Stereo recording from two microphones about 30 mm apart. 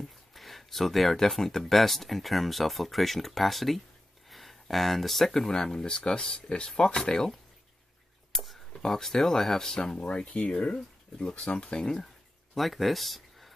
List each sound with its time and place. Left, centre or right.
0.3 s a sound: centre
1.1 s speech: centre
4.3 s a sound: centre
5.5 s speech: left
8.3 s speech: centre
9.9 s speech: left
12.5 s speech: centre